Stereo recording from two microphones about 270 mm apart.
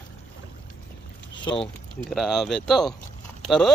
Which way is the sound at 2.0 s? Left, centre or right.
Centre.